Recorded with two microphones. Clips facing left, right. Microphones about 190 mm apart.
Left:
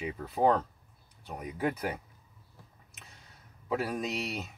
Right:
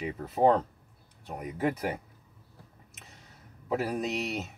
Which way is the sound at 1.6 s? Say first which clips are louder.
Right 2 dB; centre (ahead or behind).